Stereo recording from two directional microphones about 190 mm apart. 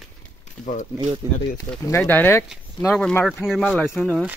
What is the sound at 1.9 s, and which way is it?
Speech, 10° left (ahead or behind).